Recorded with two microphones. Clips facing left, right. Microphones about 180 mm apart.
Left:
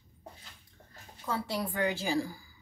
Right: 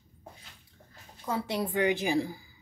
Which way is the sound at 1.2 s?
20° right (ahead or behind).